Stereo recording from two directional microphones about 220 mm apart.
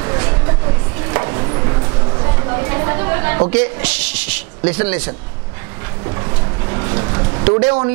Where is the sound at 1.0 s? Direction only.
20° right (ahead or behind).